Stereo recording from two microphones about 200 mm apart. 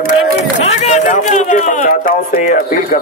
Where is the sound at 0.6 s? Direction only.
35° left (ahead or behind).